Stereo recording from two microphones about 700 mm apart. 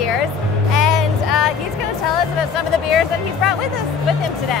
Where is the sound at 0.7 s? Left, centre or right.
Left.